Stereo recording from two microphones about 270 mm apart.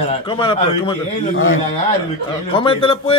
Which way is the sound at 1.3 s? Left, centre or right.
Left.